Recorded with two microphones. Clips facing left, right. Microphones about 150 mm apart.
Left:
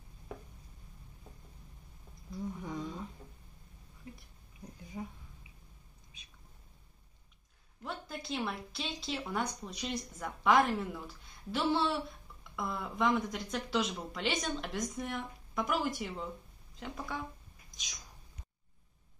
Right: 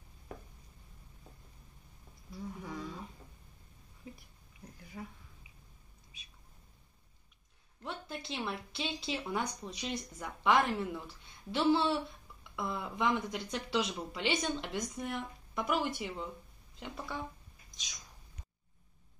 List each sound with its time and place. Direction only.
2.6 s a sound: 20° left (ahead or behind)
4.9 s speech: 15° left (ahead or behind)
7.8 s speech: centre (ahead or behind)